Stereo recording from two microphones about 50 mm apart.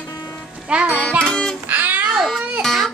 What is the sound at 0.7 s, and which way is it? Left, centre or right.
Music, right.